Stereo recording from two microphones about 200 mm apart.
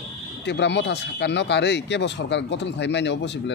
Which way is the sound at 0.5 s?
60° left (ahead or behind).